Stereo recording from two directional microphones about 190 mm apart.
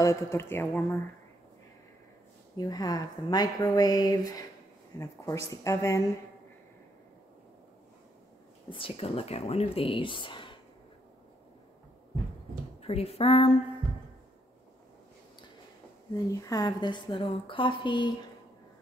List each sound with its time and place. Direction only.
0.0 s speech: 15° left (ahead or behind)
2.5 s speech: 20° left (ahead or behind)
8.6 s speech: 30° left (ahead or behind)
12.8 s speech: 30° left (ahead or behind)
16.3 s speech: 15° left (ahead or behind)